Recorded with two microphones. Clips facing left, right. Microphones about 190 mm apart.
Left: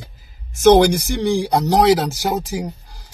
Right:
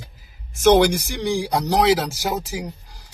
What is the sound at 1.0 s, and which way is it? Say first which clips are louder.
Speech: left 4 dB; 10° right (ahead or behind).